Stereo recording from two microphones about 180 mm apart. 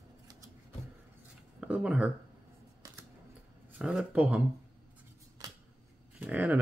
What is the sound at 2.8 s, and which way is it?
Typewriter, 20° right (ahead or behind).